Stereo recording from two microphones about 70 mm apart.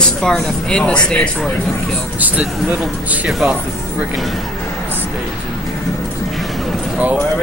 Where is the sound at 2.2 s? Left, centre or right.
Right.